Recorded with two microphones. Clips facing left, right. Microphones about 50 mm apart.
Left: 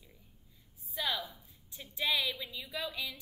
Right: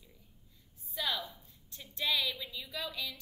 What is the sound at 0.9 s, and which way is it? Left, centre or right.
A woman's voice, centre.